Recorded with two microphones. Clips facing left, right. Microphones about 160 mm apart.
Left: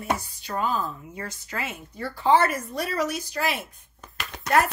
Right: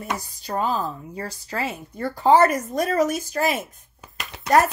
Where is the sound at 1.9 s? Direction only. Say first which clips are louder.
Right 4 dB; 45° right (ahead or behind).